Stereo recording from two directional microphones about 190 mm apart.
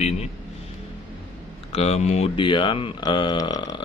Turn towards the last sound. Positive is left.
turn(degrees=20)  # may be behind; listen again after turning